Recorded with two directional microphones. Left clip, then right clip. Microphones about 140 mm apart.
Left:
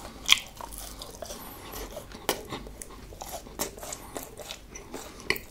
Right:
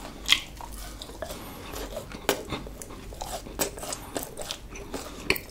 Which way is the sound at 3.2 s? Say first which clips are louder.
Right 4 dB; 35° right (ahead or behind).